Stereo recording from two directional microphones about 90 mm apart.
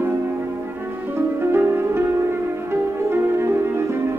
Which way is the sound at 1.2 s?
25° right (ahead or behind).